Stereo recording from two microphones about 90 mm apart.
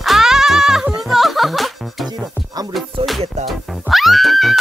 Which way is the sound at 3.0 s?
Centre (ahead or behind).